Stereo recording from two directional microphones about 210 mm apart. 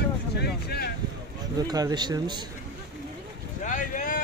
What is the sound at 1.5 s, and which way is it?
Speech, 20° right (ahead or behind).